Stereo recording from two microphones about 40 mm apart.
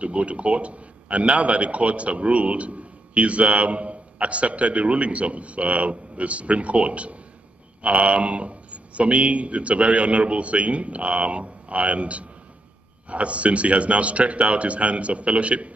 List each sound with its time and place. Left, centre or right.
0.0 s a man's voice: right